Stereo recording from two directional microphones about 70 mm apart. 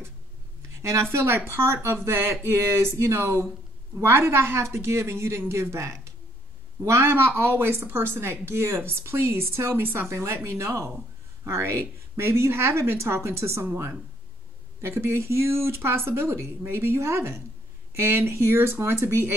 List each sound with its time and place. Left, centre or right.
1.1 s a woman's voice: right
14.8 s a woman's voice: right